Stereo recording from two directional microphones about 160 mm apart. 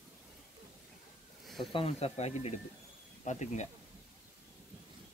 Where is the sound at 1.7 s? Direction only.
35° left (ahead or behind).